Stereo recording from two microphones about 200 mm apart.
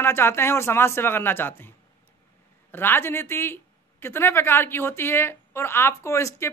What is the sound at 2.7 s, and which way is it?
Speech, 10° left (ahead or behind).